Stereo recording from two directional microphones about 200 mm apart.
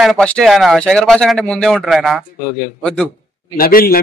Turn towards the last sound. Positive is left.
turn(degrees=45)  # may be behind; listen again after turning